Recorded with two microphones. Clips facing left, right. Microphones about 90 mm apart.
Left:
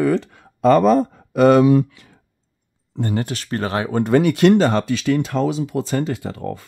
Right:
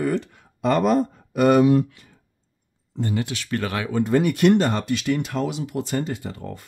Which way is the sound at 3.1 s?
40° left (ahead or behind).